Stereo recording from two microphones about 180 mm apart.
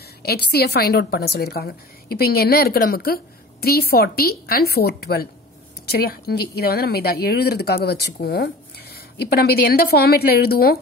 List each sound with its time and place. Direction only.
0.2 s speech: 60° left (ahead or behind)